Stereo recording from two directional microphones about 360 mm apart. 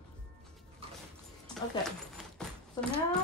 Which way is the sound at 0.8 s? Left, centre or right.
Centre.